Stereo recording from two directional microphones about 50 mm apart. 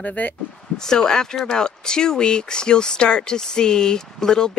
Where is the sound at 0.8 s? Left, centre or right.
Centre.